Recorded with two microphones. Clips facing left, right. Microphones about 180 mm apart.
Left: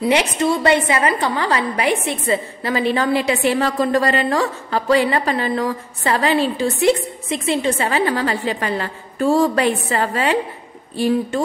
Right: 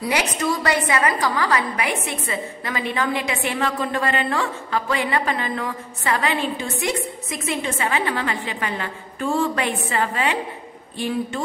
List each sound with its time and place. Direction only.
0.0 s a woman's voice: 25° left (ahead or behind)